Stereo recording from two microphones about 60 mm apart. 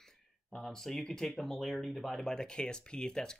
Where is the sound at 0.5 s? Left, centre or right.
Centre.